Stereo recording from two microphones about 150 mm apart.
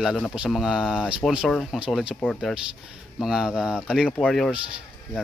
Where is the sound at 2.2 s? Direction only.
5° left (ahead or behind).